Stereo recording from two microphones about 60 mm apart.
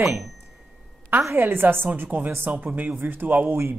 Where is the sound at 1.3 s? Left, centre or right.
Right.